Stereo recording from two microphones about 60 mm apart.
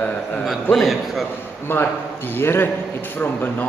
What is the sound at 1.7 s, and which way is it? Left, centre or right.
A man's voice, left.